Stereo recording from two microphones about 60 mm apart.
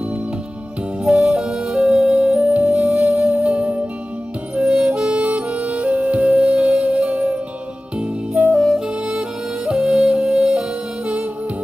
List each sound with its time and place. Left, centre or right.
1.0 s music: centre
3.4 s music: right
8.4 s music: right
9.8 s music: centre